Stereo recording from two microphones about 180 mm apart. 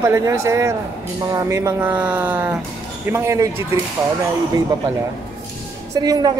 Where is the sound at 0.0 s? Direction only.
15° right (ahead or behind).